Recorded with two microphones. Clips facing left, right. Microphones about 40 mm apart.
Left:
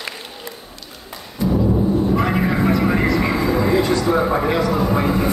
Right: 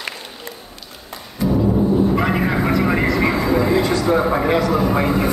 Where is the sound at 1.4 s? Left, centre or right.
Centre.